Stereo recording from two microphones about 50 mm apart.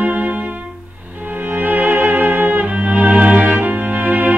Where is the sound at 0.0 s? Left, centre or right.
Right.